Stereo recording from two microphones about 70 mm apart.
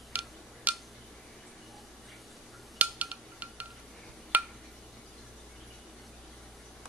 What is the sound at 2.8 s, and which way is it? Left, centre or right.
Wind chime, right.